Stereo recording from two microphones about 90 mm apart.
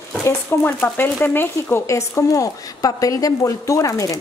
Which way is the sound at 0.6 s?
25° left (ahead or behind).